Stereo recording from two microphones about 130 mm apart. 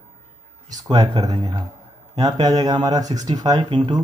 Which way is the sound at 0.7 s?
30° right (ahead or behind).